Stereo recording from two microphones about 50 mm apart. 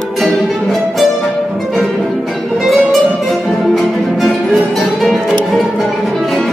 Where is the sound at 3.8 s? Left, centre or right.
Centre.